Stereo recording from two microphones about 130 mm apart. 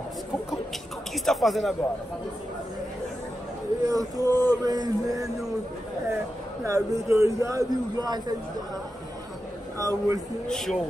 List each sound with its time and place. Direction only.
1.1 s speech: centre (ahead or behind)
3.8 s speech: 25° right (ahead or behind)
6.6 s speech: 25° right (ahead or behind)
9.8 s speech: 25° right (ahead or behind)
10.5 s speech: 5° left (ahead or behind)